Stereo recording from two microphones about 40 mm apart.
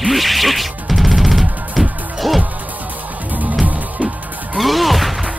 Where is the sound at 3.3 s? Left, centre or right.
Right.